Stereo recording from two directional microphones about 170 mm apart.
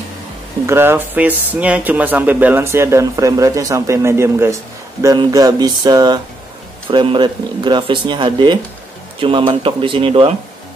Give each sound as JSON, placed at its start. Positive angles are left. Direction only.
{"t": 0.7, "sound": "speech", "side_deg": -15}